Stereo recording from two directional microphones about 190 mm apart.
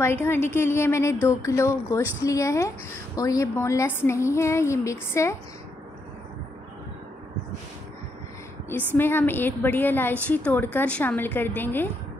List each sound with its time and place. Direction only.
0.0 s a woman's voice: 15° left (ahead or behind)
8.6 s a woman's voice: 10° left (ahead or behind)